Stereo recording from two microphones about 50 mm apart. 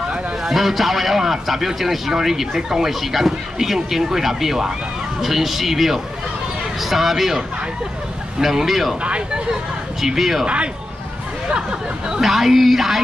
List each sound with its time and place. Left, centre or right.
0.4 s a man's voice: centre
9.0 s speech: centre
10.0 s a man's voice: centre
10.4 s speech: right
12.1 s a man's voice: centre